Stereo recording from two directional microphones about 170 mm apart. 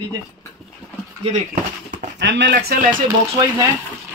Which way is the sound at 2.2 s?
90° right.